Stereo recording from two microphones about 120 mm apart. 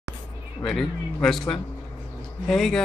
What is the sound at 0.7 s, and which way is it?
Speech, 5° left (ahead or behind).